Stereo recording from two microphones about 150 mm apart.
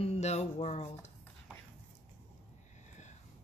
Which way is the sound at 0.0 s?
45° left (ahead or behind).